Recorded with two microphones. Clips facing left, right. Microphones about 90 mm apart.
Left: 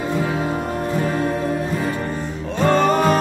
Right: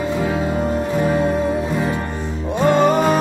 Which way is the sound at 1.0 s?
20° right (ahead or behind).